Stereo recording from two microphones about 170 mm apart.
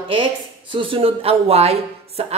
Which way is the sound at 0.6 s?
30° right (ahead or behind).